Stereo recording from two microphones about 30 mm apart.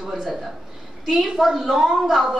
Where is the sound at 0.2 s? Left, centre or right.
Centre.